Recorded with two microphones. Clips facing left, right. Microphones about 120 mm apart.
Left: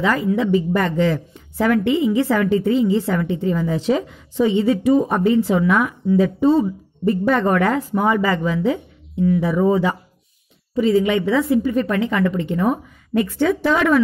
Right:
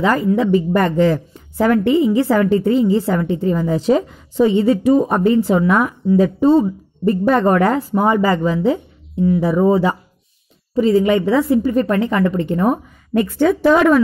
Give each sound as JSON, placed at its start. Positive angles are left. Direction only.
{"t": 0.0, "sound": "a woman's voice", "side_deg": -40}